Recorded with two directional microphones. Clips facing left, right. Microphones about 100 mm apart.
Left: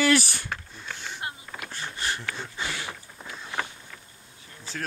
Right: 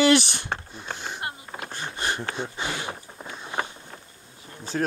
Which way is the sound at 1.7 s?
20° right (ahead or behind).